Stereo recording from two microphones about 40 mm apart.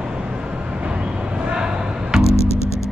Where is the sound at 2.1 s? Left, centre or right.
Centre.